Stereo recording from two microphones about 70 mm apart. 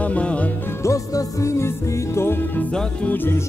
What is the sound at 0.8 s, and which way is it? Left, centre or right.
Music, left.